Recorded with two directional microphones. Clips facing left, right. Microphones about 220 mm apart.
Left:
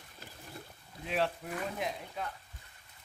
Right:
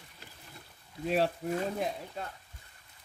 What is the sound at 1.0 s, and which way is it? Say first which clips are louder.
Speech: right 4 dB; 40° right (ahead or behind).